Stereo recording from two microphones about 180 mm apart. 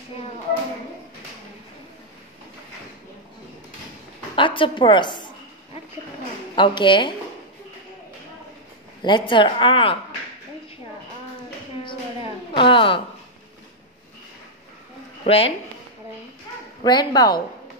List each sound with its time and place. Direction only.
4.4 s a woman's voice: 25° left (ahead or behind)
6.5 s a woman's voice: 25° left (ahead or behind)
9.0 s a woman's voice: 25° left (ahead or behind)
12.5 s a woman's voice: 30° left (ahead or behind)
15.2 s speech: 30° left (ahead or behind)
16.8 s a woman's voice: 25° left (ahead or behind)